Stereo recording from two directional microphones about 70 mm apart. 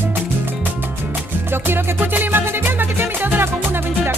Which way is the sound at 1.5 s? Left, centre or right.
Right.